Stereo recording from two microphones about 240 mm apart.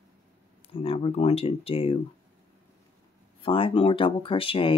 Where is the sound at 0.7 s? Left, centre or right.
Left.